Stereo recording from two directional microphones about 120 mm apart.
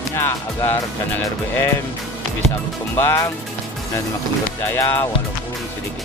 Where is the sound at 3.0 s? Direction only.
20° left (ahead or behind).